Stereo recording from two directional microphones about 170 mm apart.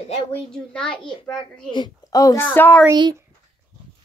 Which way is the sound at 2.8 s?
20° right (ahead or behind).